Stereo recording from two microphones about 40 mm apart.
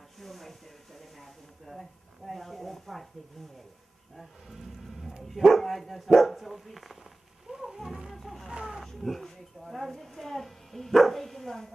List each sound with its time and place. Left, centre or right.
0.2 s a sound: centre
4.2 s speech: centre
7.4 s wild animals: centre
8.5 s speech: right
8.8 s speech: centre